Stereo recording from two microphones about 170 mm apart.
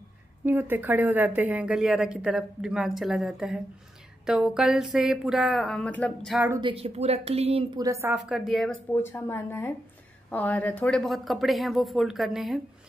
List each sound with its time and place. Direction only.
0.5 s a woman's voice: 10° right (ahead or behind); by 6.3 s 10° left (ahead or behind)
6.6 s speech: 35° right (ahead or behind)
7.8 s a woman's voice: 15° right (ahead or behind)